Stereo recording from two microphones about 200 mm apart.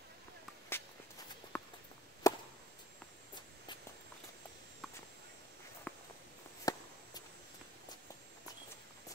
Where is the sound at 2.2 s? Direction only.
15° left (ahead or behind).